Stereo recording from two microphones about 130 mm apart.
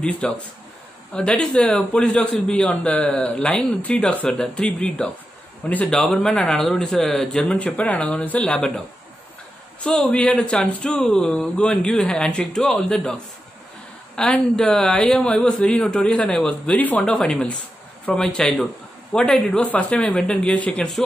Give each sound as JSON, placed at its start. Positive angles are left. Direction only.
{"t": 0.0, "sound": "a man's voice", "side_deg": 5}